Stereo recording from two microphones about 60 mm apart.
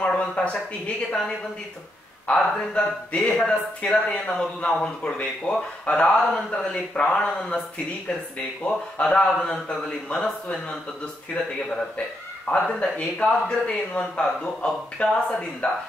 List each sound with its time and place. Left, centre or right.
0.0 s speech: centre
2.5 s speech: centre
8.6 s speech: centre
12.4 s speech: centre